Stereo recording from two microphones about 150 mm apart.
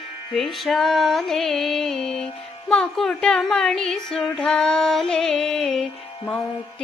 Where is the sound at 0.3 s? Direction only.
Centre (ahead or behind).